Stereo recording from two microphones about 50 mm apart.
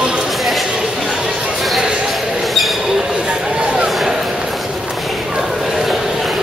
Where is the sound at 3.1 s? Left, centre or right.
Centre.